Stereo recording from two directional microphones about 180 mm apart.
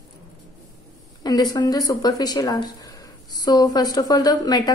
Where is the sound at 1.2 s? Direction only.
20° left (ahead or behind).